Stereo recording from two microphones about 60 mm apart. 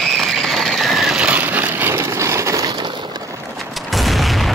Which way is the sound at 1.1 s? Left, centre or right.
Right.